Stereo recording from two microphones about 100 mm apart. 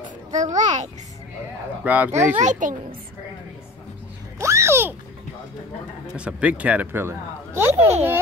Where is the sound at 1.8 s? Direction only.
15° right (ahead or behind).